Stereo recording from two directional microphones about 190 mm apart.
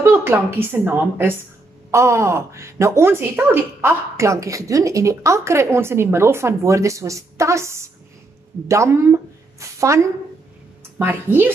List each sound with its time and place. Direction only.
0.1 s a woman's voice: 10° right (ahead or behind)